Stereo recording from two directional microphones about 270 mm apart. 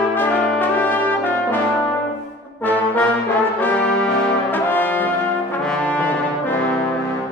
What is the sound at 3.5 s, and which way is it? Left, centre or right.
Brass instrument, centre.